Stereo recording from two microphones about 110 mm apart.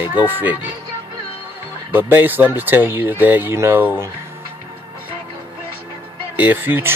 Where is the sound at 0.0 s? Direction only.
15° right (ahead or behind).